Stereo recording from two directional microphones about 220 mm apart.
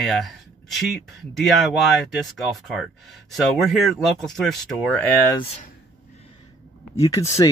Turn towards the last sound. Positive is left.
turn(degrees=15)  # may be behind; listen again after turning